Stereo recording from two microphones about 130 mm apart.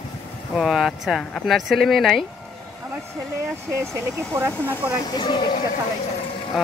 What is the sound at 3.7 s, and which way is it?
Speech, 20° right (ahead or behind).